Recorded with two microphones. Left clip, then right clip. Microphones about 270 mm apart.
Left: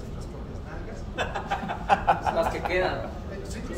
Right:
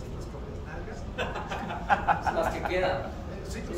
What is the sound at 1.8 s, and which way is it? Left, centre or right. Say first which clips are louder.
Speech: left 2 dB; left.